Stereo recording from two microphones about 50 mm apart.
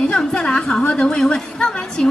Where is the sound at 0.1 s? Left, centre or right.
Centre.